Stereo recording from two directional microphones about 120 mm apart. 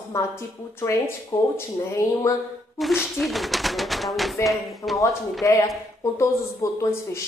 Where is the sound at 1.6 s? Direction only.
25° left (ahead or behind).